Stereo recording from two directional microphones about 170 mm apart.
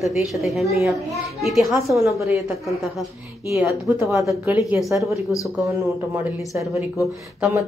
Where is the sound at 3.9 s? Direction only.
10° right (ahead or behind).